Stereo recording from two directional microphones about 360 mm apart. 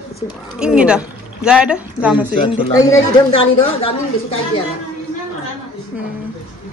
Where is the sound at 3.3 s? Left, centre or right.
Centre.